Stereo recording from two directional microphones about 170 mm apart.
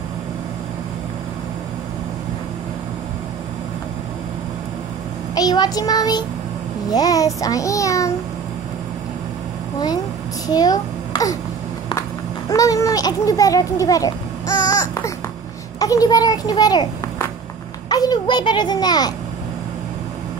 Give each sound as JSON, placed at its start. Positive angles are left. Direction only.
{"t": 5.3, "sound": "child singing", "side_deg": 25}
{"t": 6.9, "sound": "a child's voice", "side_deg": 20}
{"t": 10.5, "sound": "a child's voice", "side_deg": 20}
{"t": 12.4, "sound": "a child's voice", "side_deg": 20}